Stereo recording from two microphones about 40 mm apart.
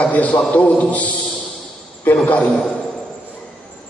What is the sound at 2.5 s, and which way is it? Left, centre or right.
Speech, centre.